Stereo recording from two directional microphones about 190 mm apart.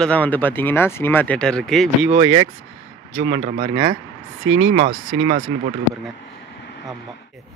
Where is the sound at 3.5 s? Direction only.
25° right (ahead or behind).